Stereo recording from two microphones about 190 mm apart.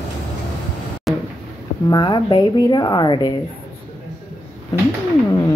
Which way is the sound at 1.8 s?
25° left (ahead or behind).